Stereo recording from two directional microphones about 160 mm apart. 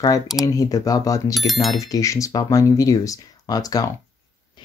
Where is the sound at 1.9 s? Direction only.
20° left (ahead or behind).